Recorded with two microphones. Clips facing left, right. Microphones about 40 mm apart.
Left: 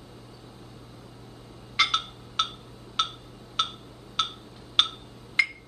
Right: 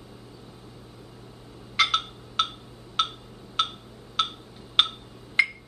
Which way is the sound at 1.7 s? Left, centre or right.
Centre.